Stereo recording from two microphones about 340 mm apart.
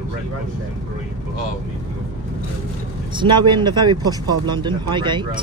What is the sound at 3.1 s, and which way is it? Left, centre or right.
Speech, centre.